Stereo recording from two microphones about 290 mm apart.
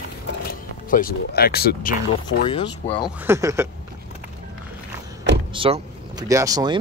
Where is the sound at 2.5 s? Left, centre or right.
Centre.